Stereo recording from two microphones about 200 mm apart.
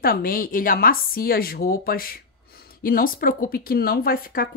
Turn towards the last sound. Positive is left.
turn(degrees=45)  # may be behind; listen again after turning